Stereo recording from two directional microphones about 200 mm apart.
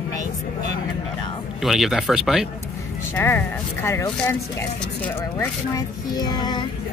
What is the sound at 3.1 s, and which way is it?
Speech, 10° left (ahead or behind).